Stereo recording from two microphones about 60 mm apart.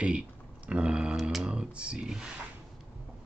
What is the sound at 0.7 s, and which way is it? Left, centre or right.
Speech, centre.